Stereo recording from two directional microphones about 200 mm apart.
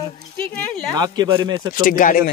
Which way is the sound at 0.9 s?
20° right (ahead or behind).